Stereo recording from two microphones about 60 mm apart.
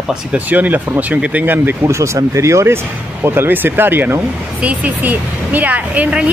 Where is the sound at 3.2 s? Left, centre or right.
Right.